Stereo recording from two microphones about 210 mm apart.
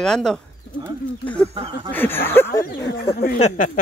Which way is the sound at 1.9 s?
10° left (ahead or behind).